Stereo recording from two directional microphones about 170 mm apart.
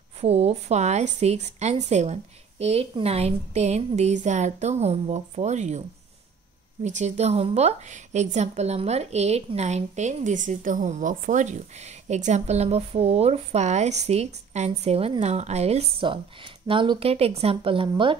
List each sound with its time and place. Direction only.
0.2 s a woman's voice: 35° right (ahead or behind)